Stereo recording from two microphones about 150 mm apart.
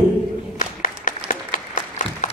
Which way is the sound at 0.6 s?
60° left (ahead or behind).